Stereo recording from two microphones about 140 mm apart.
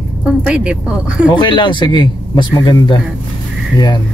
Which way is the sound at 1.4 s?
35° left (ahead or behind).